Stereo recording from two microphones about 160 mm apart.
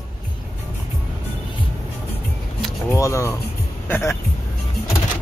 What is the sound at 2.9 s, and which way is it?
Speech, 20° left (ahead or behind).